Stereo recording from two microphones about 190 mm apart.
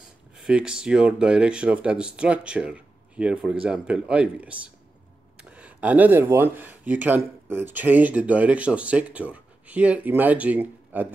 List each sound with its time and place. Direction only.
0.4 s speech: 5° right (ahead or behind)